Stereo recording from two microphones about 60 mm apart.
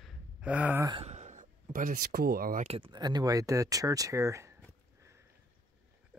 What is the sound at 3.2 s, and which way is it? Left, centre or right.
Speech, right.